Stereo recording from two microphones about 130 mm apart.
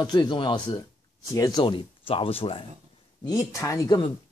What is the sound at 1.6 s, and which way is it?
Speech, 40° left (ahead or behind).